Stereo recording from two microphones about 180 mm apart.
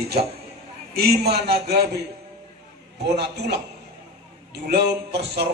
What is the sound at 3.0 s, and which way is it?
Speech, 65° right (ahead or behind).